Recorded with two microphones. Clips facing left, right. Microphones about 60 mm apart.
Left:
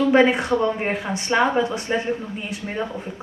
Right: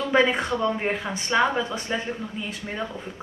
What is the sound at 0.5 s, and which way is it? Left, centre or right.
A woman's voice, left.